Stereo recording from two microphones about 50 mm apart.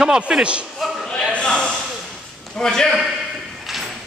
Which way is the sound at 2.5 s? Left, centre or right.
Centre.